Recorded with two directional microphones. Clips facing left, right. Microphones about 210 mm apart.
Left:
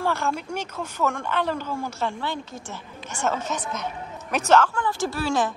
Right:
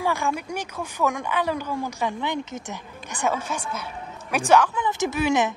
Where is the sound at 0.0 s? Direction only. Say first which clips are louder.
Even; 15° right (ahead or behind).